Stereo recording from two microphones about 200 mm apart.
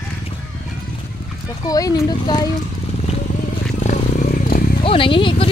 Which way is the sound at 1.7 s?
20° left (ahead or behind).